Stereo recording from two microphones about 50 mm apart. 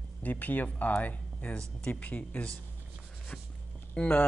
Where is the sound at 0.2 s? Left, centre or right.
Left.